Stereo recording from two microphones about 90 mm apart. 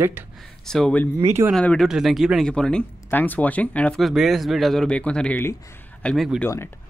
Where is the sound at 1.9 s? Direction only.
5° right (ahead or behind).